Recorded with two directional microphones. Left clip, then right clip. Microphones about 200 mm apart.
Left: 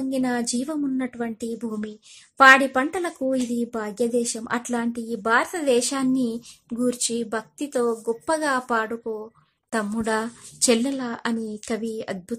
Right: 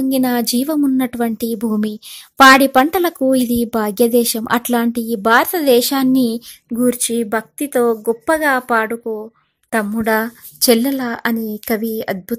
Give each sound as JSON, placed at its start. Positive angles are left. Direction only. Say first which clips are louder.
{"t": 0.1, "sound": "a woman's voice", "louder": "right 6 dB", "side_deg": -40}